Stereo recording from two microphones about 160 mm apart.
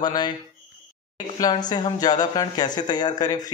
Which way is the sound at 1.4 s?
25° left (ahead or behind).